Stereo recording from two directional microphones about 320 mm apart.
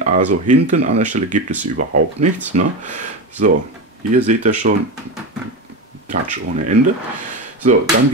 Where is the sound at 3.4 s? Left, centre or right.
Right.